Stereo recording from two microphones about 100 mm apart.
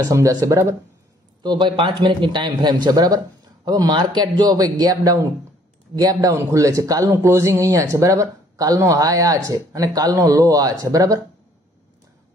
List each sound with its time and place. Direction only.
0.0 s speech: 35° right (ahead or behind)
1.4 s speech: 50° right (ahead or behind); by 11.1 s 35° right (ahead or behind)